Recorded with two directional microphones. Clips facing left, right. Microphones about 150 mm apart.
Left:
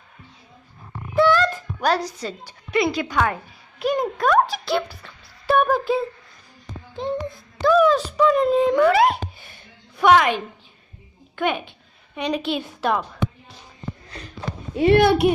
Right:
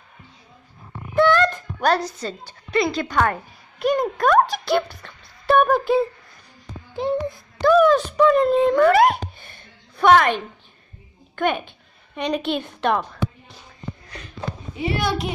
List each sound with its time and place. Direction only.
1.1 s speech: 5° left (ahead or behind)
7.0 s a woman's voice: centre (ahead or behind)
14.8 s speech: 60° left (ahead or behind)